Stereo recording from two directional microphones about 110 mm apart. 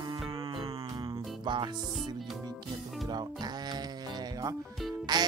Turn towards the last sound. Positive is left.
turn(degrees=-40)  # may be behind; listen again after turning